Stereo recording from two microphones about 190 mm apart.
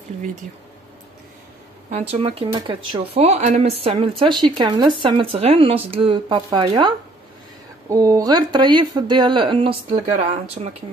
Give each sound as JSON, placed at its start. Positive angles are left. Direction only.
{"t": 1.9, "sound": "speech", "side_deg": -35}
{"t": 7.9, "sound": "speech", "side_deg": -15}